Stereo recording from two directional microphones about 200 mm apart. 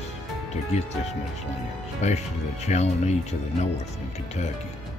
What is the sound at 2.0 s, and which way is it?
Speech, 35° left (ahead or behind).